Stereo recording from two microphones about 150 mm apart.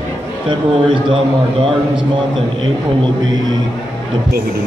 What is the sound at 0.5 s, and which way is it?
A man's voice, 35° right (ahead or behind).